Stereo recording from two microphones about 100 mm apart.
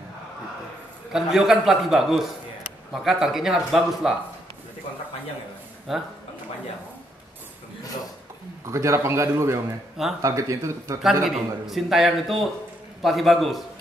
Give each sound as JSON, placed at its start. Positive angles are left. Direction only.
{"t": 1.1, "sound": "a man's voice", "side_deg": -5}
{"t": 5.9, "sound": "a man's voice", "side_deg": 0}
{"t": 8.7, "sound": "a man's voice", "side_deg": -30}
{"t": 11.2, "sound": "a man's voice", "side_deg": 0}